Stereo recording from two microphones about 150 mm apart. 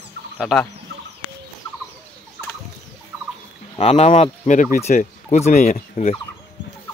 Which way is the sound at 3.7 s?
50° left (ahead or behind).